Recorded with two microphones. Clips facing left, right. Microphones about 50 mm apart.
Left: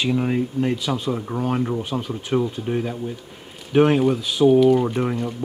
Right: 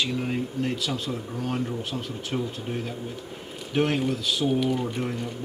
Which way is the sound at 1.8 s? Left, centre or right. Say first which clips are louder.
Left 5 dB; centre.